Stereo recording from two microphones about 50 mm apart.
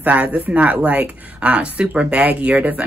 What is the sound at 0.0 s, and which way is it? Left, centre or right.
Speech, right.